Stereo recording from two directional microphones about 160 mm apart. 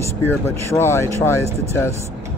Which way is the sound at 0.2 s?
15° left (ahead or behind).